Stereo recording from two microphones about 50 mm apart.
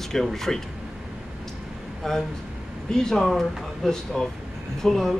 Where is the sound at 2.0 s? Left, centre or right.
Centre.